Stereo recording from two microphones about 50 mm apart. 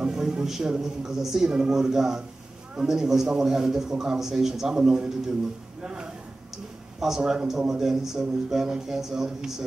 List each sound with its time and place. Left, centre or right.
0.0 s a man's voice: centre